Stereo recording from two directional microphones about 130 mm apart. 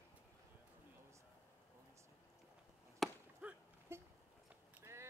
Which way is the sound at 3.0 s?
Centre (ahead or behind).